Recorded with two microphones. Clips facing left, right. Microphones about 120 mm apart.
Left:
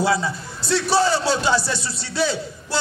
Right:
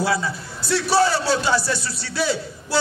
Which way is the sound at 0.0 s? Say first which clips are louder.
Left 2 dB; 20° left (ahead or behind).